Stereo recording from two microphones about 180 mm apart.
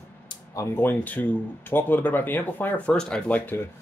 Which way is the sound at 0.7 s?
10° left (ahead or behind).